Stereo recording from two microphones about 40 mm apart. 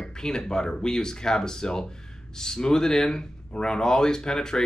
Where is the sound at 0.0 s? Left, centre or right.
Centre.